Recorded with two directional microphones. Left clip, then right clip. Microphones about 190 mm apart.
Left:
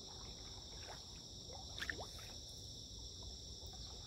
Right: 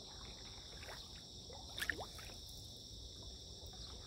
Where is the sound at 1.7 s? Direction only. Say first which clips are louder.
Right 4 dB; 40° right (ahead or behind).